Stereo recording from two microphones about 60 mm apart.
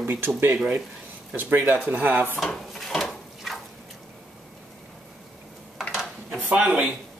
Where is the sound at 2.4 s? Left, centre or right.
Centre.